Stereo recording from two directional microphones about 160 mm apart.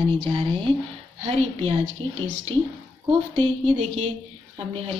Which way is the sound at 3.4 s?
35° right (ahead or behind).